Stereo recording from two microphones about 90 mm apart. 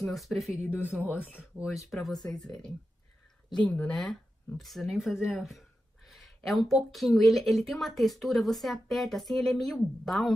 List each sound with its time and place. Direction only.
0.0 s speech: centre (ahead or behind)
1.2 s speech: 20° left (ahead or behind)
1.6 s speech: centre (ahead or behind)